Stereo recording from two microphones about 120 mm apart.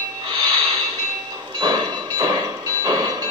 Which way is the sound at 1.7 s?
30° right (ahead or behind).